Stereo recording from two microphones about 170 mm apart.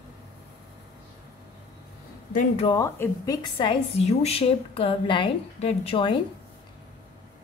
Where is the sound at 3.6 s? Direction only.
35° left (ahead or behind).